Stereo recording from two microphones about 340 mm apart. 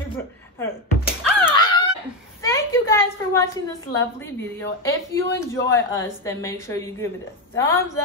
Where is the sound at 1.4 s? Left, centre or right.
Centre.